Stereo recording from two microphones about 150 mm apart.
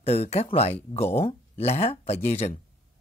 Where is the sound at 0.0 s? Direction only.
45° left (ahead or behind).